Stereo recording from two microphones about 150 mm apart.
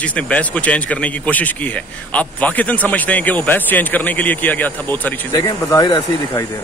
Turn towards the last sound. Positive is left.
turn(degrees=25)  # may be behind; listen again after turning